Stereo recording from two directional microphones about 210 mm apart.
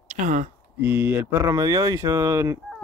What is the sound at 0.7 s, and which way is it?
Speech, 10° right (ahead or behind).